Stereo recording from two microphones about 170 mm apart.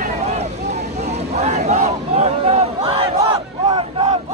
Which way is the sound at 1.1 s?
40° right (ahead or behind).